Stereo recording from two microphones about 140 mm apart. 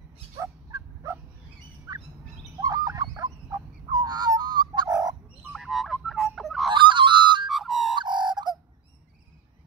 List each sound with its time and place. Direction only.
0.4 s fowl: 25° right (ahead or behind)
2.5 s fowl: 25° right (ahead or behind)
5.5 s frog: centre (ahead or behind)
6.7 s a sound: 35° right (ahead or behind)
7.4 s music: centre (ahead or behind)
7.9 s a sound: 35° right (ahead or behind)